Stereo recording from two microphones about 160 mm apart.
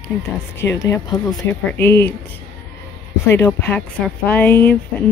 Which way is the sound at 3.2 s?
15° left (ahead or behind).